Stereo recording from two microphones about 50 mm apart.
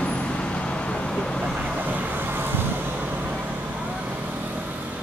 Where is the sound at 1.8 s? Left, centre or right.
Right.